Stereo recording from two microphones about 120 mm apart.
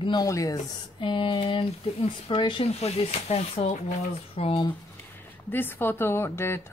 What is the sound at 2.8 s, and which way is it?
Speech, 60° left (ahead or behind).